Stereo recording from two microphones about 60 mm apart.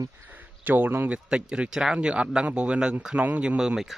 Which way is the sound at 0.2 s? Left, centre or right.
Right.